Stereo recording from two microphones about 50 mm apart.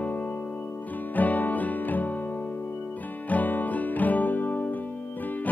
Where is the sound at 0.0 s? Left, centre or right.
Left.